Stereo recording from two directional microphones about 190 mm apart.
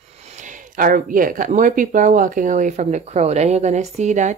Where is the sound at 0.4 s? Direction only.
45° right (ahead or behind).